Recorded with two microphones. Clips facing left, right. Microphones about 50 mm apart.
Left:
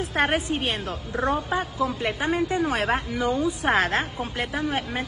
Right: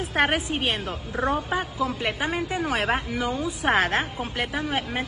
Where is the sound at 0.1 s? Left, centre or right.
Centre.